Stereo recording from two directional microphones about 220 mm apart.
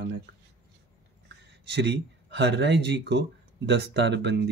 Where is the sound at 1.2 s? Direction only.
50° right (ahead or behind).